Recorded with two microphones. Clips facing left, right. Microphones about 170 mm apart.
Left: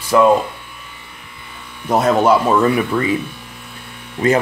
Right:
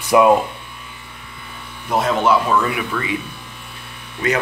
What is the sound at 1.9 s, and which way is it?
Speech, 40° left (ahead or behind).